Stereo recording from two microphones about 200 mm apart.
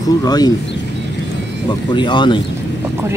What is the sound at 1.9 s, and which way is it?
Speech, 25° left (ahead or behind).